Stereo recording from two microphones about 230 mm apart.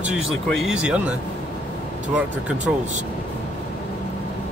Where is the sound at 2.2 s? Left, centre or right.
Centre.